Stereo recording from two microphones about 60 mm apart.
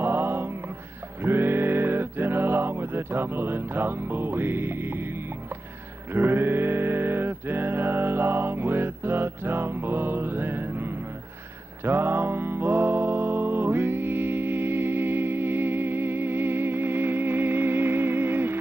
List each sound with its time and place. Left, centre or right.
0.0 s music: right
1.2 s a sound: right
11.8 s music: right